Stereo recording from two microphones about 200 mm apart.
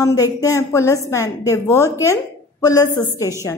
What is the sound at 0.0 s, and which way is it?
A woman's voice, 15° left (ahead or behind).